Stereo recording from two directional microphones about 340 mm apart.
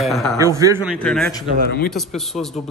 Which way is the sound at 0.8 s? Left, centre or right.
Centre.